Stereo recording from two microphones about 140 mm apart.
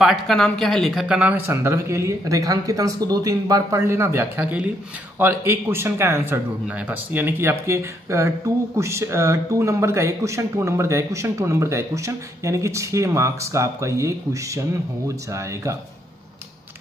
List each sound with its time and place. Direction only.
0.0 s speech: centre (ahead or behind); by 15.7 s 20° right (ahead or behind)